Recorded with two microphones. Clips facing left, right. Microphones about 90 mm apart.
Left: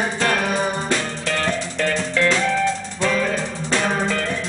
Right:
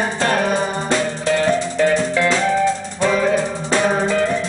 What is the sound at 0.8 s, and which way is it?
Music, 20° right (ahead or behind).